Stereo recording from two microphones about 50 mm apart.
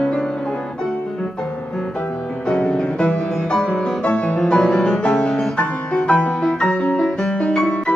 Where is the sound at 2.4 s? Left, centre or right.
Centre.